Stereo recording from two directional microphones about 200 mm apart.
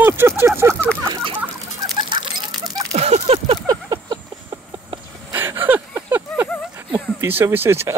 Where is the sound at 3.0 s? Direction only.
35° right (ahead or behind).